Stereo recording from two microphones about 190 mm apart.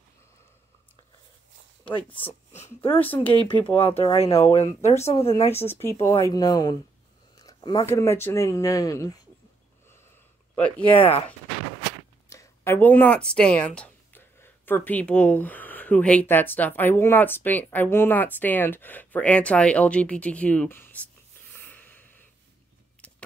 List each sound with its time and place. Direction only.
2.6 s speech: 30° left (ahead or behind)
5.7 s speech: 15° left (ahead or behind)
10.5 s speech: 10° left (ahead or behind)
12.3 s speech: 15° left (ahead or behind)
21.5 s a sound: 10° left (ahead or behind)